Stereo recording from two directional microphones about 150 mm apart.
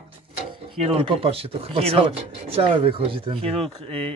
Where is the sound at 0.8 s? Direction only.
40° right (ahead or behind).